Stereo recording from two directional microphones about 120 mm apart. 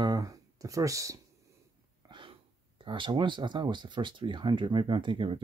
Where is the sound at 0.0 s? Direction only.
30° right (ahead or behind).